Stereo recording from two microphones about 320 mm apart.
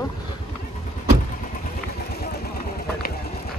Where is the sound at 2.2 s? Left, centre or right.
Left.